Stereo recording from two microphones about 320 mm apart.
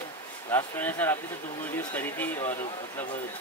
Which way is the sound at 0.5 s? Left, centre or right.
Centre.